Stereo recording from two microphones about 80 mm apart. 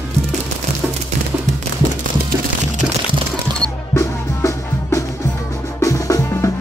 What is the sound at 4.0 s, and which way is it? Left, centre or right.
Music, left.